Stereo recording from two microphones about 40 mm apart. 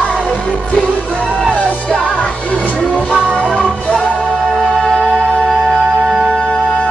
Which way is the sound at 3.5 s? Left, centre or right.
Left.